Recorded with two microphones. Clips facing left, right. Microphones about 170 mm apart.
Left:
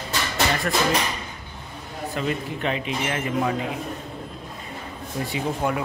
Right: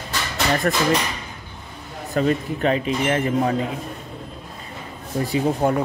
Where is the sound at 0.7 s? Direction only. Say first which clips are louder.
Right 3 dB; 45° right (ahead or behind).